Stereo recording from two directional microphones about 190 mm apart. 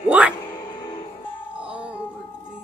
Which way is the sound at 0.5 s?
20° left (ahead or behind).